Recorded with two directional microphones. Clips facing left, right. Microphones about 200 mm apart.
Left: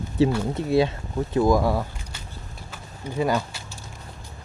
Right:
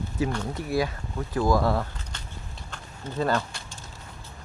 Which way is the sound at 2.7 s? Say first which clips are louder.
Left 3 dB; 10° left (ahead or behind).